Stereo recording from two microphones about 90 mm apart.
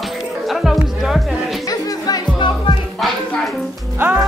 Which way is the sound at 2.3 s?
60° left (ahead or behind).